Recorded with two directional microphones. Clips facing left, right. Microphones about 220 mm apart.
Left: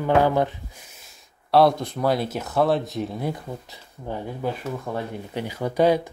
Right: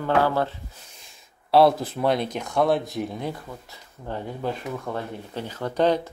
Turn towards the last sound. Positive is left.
turn(degrees=10)  # may be behind; listen again after turning